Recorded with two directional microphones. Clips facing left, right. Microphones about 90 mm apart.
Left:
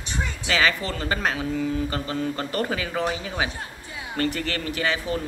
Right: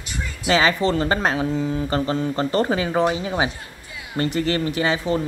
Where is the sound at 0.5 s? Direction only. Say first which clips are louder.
Right 6 dB; 30° right (ahead or behind).